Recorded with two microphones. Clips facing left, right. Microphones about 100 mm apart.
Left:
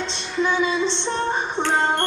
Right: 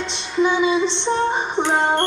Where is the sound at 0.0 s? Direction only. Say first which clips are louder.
Right 4 dB; 15° right (ahead or behind).